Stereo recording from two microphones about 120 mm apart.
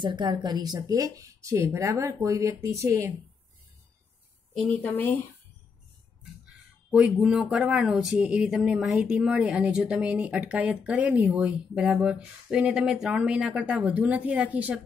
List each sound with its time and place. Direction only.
0.0 s a woman's voice: 40° right (ahead or behind); by 3.1 s 25° right (ahead or behind)
4.8 s speech: 15° left (ahead or behind)
6.9 s speech: 10° right (ahead or behind)